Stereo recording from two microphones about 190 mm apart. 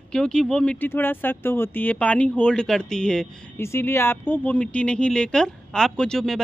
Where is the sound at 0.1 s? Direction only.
5° left (ahead or behind).